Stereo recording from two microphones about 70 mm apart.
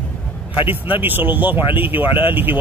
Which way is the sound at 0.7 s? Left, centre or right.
Right.